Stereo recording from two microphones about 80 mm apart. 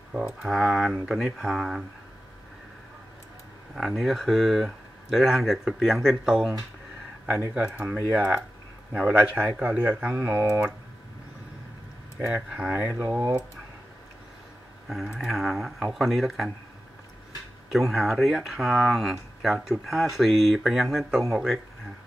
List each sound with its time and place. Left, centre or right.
0.2 s speech: centre
3.7 s speech: centre
7.5 s a man's voice: centre
12.4 s speech: centre
14.9 s speech: centre
17.6 s speech: centre